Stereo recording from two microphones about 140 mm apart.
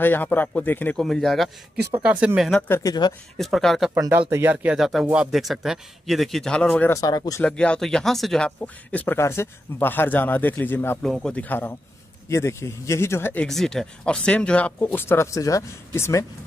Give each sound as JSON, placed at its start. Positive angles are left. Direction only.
{"t": 0.0, "sound": "speech", "side_deg": 15}
{"t": 2.0, "sound": "speech", "side_deg": -10}
{"t": 2.7, "sound": "speech", "side_deg": 25}
{"t": 3.3, "sound": "speech", "side_deg": 0}
{"t": 4.1, "sound": "speech", "side_deg": -15}
{"t": 6.9, "sound": "speech", "side_deg": 25}
{"t": 7.4, "sound": "speech", "side_deg": 5}
{"t": 11.0, "sound": "speech", "side_deg": 5}
{"t": 13.5, "sound": "speech", "side_deg": 5}